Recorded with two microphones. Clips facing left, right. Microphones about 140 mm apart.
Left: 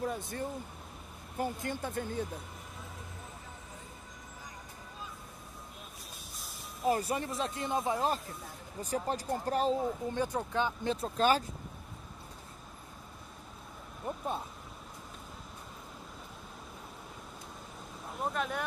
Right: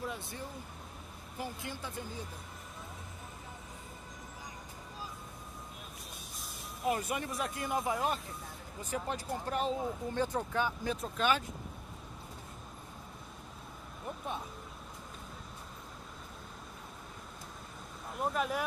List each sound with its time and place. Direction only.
0.0 s speech: 45° left (ahead or behind)
6.3 s vehicle: centre (ahead or behind)
6.9 s speech: 35° left (ahead or behind)
10.1 s speech: 15° left (ahead or behind)
10.6 s speech: 25° left (ahead or behind)
14.0 s a sound: 35° left (ahead or behind)
18.1 s speech: centre (ahead or behind)